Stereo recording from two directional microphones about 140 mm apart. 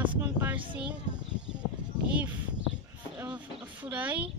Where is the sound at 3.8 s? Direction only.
10° right (ahead or behind).